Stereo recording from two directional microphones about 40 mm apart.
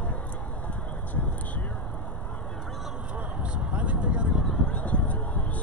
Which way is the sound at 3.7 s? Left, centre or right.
Right.